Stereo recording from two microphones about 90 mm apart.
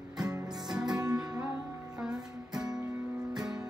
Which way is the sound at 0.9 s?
45° right (ahead or behind).